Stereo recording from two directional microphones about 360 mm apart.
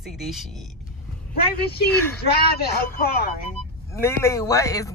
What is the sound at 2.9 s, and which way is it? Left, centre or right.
Speech, left.